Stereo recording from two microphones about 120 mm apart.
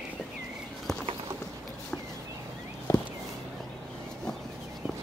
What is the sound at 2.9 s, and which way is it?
Walk, 25° left (ahead or behind).